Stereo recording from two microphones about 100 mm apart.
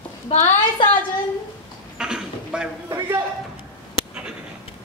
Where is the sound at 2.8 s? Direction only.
30° right (ahead or behind).